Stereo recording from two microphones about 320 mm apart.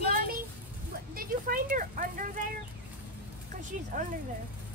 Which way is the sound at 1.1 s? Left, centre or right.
Right.